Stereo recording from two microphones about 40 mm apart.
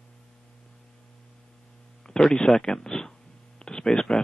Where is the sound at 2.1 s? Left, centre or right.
Centre.